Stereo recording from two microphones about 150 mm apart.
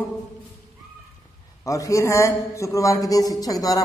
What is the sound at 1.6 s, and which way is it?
A man's voice, 20° left (ahead or behind).